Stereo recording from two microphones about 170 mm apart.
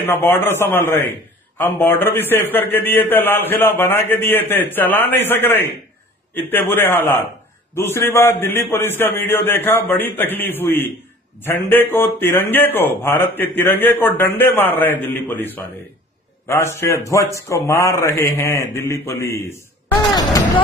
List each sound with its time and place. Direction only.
0.0 s a man's voice: 10° left (ahead or behind)